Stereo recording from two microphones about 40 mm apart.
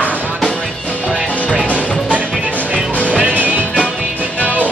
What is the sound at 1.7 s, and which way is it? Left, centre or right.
Music, left.